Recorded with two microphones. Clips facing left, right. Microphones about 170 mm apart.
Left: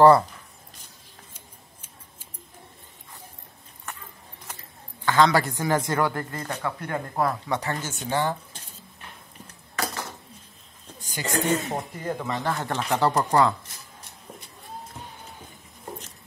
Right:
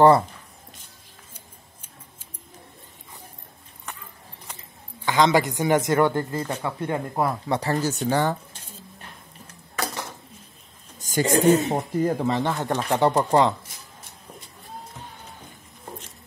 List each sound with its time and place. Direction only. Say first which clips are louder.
5.0 s a woman's voice: right 1 dB; 15° right (ahead or behind)
7.4 s a woman's voice: right 5 dB; 30° right (ahead or behind)
11.0 s a sound: right 10 dB; 45° right (ahead or behind)
11.3 s a woman's voice: right 6 dB; 30° right (ahead or behind)
12.4 s speech: right 2 dB; 15° right (ahead or behind)